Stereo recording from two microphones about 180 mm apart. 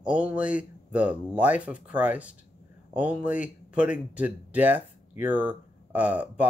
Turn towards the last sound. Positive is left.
turn(degrees=-10)  # may be behind; listen again after turning